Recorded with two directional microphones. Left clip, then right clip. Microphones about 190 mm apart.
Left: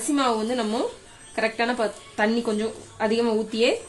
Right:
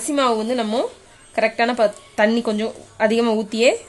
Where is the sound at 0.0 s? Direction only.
40° right (ahead or behind).